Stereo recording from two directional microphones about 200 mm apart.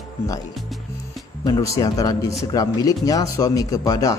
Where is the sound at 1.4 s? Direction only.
20° left (ahead or behind).